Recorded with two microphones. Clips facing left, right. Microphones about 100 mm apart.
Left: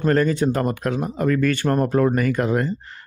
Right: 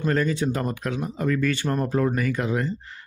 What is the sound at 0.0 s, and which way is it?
Speech, 50° left (ahead or behind).